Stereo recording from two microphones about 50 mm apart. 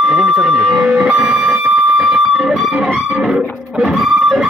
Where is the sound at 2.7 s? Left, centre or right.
Right.